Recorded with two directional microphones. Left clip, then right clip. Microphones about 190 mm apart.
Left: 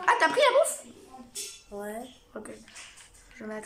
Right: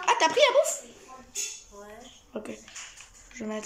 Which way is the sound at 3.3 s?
15° right (ahead or behind).